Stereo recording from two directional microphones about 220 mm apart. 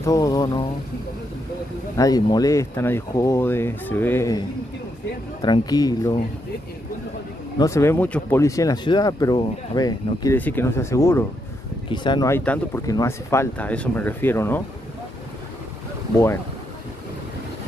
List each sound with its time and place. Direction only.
0.0 s speech: 15° left (ahead or behind)
2.0 s speech: 15° left (ahead or behind)
5.4 s speech: 20° left (ahead or behind)
7.5 s speech: 15° left (ahead or behind)